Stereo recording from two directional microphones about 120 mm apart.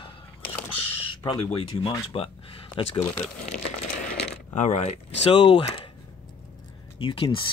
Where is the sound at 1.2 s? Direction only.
50° left (ahead or behind).